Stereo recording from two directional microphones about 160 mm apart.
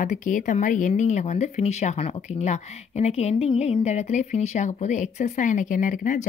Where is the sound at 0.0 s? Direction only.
50° left (ahead or behind).